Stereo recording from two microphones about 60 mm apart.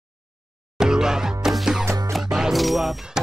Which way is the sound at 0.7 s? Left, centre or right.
Centre.